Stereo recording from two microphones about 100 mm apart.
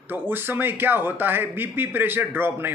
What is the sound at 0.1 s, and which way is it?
Speech, 20° right (ahead or behind).